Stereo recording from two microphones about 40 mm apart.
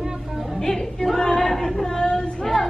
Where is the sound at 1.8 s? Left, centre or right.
Centre.